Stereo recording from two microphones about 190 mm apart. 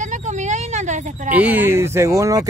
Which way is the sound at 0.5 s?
40° right (ahead or behind).